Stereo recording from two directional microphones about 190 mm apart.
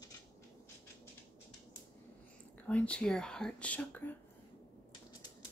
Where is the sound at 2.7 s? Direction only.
5° left (ahead or behind).